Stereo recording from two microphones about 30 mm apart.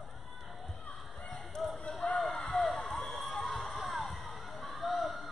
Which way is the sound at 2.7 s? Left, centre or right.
Centre.